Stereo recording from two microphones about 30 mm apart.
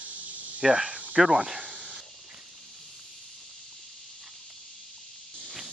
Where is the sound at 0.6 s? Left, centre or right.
Right.